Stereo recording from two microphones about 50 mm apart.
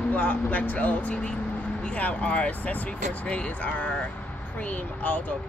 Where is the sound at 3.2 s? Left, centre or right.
Centre.